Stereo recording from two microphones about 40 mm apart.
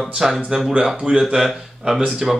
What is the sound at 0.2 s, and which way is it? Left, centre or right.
Speech, centre.